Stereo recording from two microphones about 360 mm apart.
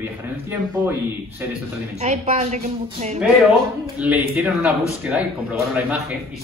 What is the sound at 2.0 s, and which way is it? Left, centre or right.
A woman's voice, centre.